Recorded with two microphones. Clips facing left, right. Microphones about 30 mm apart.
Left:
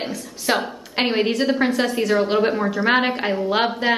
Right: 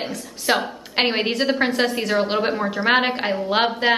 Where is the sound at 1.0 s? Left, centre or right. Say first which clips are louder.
Even; centre.